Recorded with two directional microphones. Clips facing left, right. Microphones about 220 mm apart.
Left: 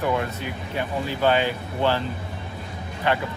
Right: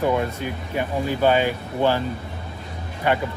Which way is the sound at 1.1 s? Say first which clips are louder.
Right 2 dB; 15° right (ahead or behind).